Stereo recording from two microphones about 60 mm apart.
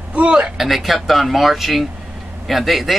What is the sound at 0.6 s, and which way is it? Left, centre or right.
Speech, centre.